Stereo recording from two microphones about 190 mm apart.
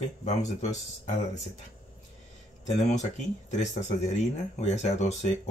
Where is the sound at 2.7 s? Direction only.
40° left (ahead or behind).